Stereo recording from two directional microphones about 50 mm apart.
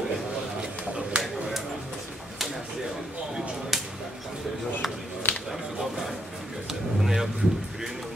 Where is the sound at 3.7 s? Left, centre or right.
Centre.